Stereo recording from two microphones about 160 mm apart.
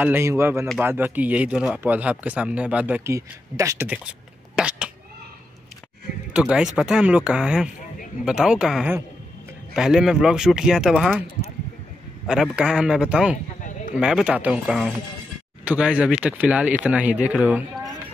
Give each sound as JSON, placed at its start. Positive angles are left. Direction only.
{"t": 0.0, "sound": "speech", "side_deg": -15}
{"t": 4.6, "sound": "cat", "side_deg": -5}
{"t": 6.3, "sound": "speech", "side_deg": -5}
{"t": 12.3, "sound": "speech", "side_deg": -5}
{"t": 13.6, "sound": "a sound", "side_deg": 50}
{"t": 13.9, "sound": "speech", "side_deg": -5}